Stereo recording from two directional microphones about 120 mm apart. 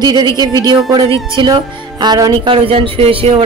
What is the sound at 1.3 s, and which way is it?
Speech, 40° right (ahead or behind).